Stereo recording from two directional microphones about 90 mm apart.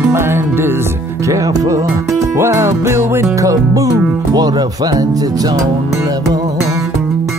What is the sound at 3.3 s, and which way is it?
Speech, 40° right (ahead or behind).